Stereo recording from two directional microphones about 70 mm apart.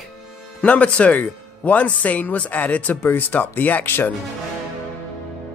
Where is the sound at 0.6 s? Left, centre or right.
Centre.